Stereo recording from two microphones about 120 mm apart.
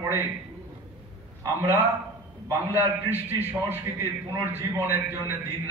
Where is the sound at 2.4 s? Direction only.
20° right (ahead or behind).